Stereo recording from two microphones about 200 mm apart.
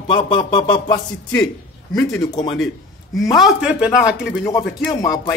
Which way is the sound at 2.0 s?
15° left (ahead or behind).